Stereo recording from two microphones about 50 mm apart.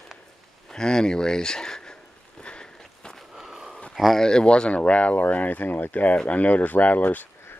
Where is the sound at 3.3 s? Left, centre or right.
Centre.